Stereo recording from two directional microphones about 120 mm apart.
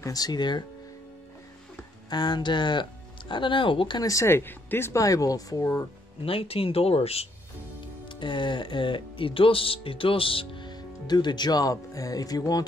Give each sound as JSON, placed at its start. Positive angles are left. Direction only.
{"t": 0.0, "sound": "speech", "side_deg": 30}
{"t": 2.0, "sound": "speech", "side_deg": 35}
{"t": 4.1, "sound": "speech", "side_deg": 20}
{"t": 6.2, "sound": "speech", "side_deg": 50}
{"t": 8.1, "sound": "speech", "side_deg": 40}